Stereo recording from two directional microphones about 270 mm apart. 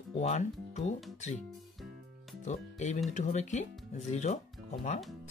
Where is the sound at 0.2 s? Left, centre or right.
Left.